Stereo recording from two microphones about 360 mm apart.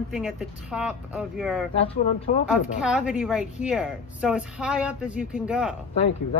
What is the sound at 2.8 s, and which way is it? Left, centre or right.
Speech, centre.